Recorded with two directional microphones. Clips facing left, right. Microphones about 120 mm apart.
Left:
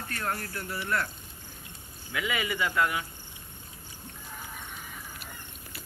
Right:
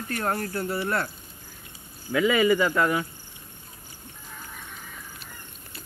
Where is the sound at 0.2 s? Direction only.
35° right (ahead or behind).